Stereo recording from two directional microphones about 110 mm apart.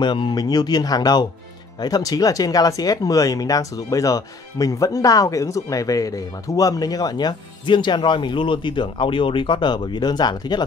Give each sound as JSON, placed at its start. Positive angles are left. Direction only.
{"t": 0.0, "sound": "speech", "side_deg": 45}